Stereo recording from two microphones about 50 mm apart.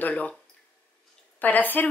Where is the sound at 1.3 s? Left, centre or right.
Left.